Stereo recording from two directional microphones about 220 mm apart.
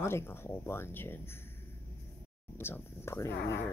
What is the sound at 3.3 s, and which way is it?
Speech, 50° left (ahead or behind).